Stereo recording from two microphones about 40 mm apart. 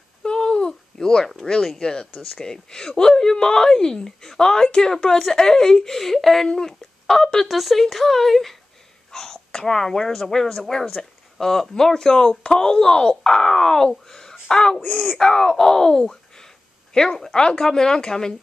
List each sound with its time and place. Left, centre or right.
0.2 s babbling: left
1.8 s speech: centre
7.4 s speech: centre
14.0 s a sound: centre
14.5 s speech: centre
14.9 s speech: centre
15.2 s a sound: centre
17.2 s speech: left